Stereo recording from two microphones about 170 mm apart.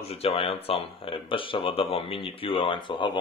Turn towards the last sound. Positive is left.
turn(degrees=30)  # may be behind; listen again after turning